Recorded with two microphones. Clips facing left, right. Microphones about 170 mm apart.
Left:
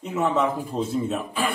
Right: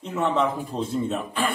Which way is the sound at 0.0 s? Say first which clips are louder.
Left 1 dB; 5° left (ahead or behind).